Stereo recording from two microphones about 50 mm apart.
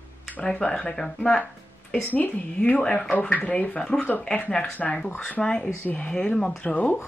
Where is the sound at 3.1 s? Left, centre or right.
Left.